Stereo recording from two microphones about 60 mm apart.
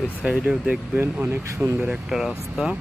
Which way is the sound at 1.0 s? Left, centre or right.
Right.